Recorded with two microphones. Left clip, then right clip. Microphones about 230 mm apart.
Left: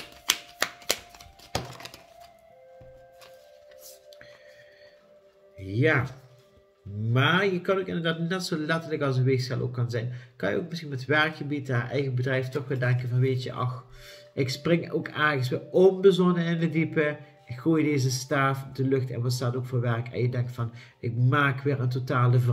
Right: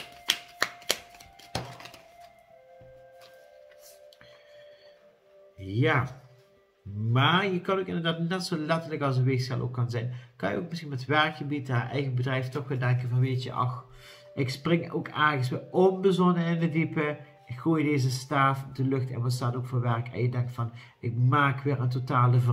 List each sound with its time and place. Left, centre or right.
1.1 s a sound: left
5.6 s speech: centre
7.1 s speech: centre